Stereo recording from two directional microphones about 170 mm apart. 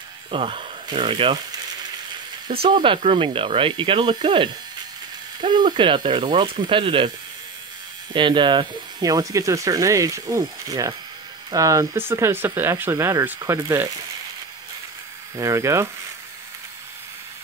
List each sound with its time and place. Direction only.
0.3 s speech: 30° right (ahead or behind)
8.1 s speech: 30° right (ahead or behind)
15.3 s speech: 15° right (ahead or behind)